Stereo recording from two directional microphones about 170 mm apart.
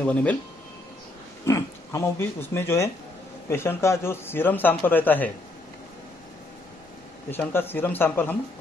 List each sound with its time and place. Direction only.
0.0 s speech: 10° left (ahead or behind)
1.4 s speech: 20° left (ahead or behind)
7.2 s speech: 10° left (ahead or behind)